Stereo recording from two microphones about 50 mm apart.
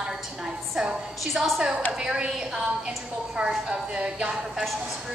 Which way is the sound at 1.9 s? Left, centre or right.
Centre.